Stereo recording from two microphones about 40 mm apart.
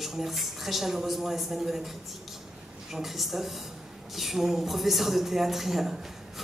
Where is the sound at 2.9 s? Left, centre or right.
Centre.